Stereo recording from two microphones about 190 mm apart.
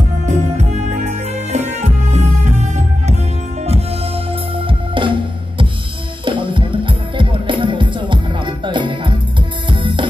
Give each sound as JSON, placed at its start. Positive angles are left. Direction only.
{"t": 0.3, "sound": "music", "side_deg": -40}
{"t": 6.2, "sound": "music", "side_deg": -25}